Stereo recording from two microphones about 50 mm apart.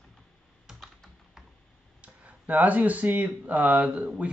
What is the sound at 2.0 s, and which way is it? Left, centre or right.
Speech, right.